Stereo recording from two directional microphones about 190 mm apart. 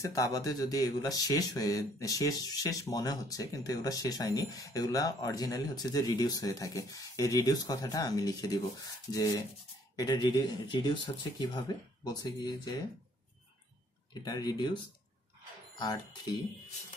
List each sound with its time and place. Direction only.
0.0 s speech: 20° left (ahead or behind)
14.2 s speech: 20° left (ahead or behind)